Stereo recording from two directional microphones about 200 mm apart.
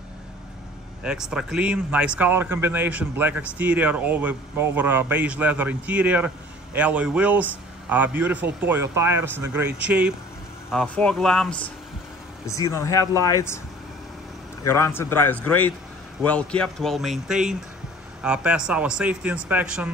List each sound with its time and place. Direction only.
1.0 s speech: 5° right (ahead or behind)
10.7 s a man's voice: 5° left (ahead or behind)
12.6 s a man's voice: 15° left (ahead or behind)
14.6 s a man's voice: 15° left (ahead or behind); by 19.9 s 5° right (ahead or behind)